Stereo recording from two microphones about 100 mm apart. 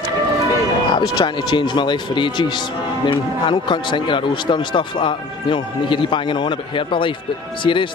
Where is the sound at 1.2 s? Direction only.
50° left (ahead or behind).